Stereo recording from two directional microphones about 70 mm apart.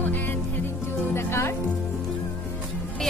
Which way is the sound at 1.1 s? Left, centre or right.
Left.